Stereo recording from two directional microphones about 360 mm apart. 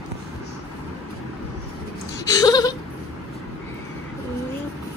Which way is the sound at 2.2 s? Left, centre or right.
Centre.